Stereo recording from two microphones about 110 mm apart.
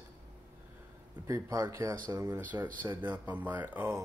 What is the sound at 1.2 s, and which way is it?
Speech, 30° right (ahead or behind).